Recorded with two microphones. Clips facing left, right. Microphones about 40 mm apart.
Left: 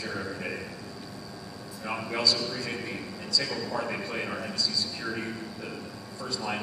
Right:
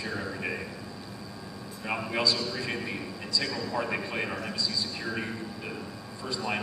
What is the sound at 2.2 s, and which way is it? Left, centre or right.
Speech, right.